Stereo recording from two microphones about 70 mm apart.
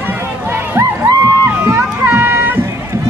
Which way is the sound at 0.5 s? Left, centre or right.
Right.